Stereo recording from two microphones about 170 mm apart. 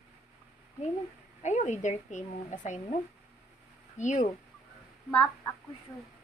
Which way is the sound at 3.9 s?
45° left (ahead or behind).